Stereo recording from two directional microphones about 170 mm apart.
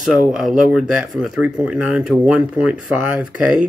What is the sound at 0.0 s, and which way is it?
Speech, 5° right (ahead or behind).